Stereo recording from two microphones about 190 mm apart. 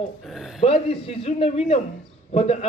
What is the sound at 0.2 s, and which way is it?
Speech, centre (ahead or behind).